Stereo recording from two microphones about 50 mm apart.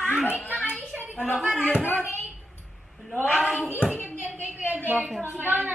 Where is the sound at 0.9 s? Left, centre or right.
Right.